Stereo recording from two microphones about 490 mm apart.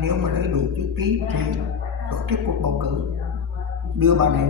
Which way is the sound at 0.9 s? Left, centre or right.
Right.